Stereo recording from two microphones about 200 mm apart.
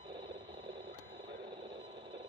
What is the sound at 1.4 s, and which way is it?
Radio, 20° right (ahead or behind).